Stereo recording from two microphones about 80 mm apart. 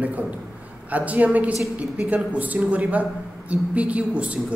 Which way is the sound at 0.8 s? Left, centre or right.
Centre.